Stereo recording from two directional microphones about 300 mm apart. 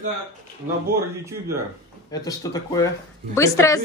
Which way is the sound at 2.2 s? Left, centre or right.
Centre.